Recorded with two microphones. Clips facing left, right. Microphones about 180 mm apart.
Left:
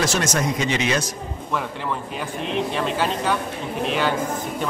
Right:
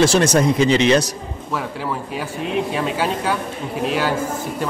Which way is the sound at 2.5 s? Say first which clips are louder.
Right 2 dB; 5° right (ahead or behind).